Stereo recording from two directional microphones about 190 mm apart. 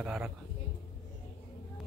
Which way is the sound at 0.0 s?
Centre (ahead or behind).